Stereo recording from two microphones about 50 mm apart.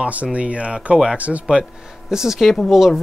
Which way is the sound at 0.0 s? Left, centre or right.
Right.